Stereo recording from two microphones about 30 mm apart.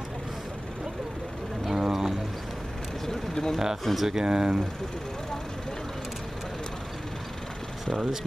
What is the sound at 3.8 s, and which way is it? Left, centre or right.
Speech, centre.